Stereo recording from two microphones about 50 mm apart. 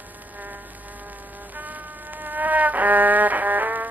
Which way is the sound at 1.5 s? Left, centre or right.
Right.